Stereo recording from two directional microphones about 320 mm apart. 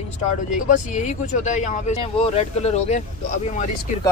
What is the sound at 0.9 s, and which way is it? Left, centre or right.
Speech, left.